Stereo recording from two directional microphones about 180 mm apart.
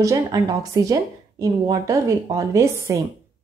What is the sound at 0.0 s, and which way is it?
A woman's voice, 20° right (ahead or behind).